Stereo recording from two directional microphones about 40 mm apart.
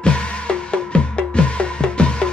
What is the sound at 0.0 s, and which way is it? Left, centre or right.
Music, left.